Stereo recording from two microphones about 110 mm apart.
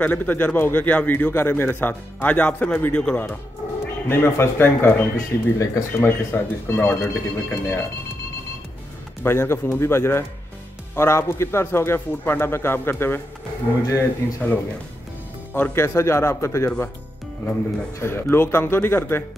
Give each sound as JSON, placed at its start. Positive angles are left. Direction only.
{"t": 0.0, "sound": "a man's voice", "side_deg": 15}
{"t": 9.2, "sound": "speech", "side_deg": 20}
{"t": 15.5, "sound": "speech", "side_deg": 20}
{"t": 17.9, "sound": "speech", "side_deg": 20}